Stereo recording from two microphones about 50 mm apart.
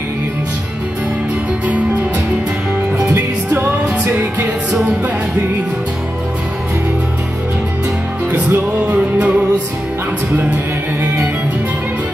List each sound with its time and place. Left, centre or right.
3.6 s music: right
8.9 s music: right